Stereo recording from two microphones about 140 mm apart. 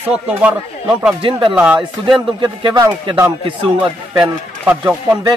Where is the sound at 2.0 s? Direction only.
30° right (ahead or behind).